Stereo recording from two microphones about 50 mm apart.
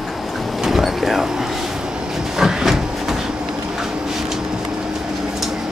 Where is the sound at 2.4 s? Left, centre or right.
Centre.